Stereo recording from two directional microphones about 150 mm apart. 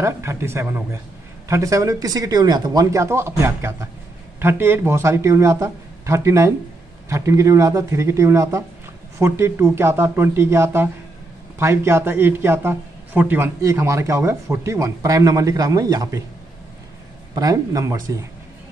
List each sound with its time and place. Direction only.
0.0 s speech: 15° right (ahead or behind)
17.3 s speech: 25° right (ahead or behind)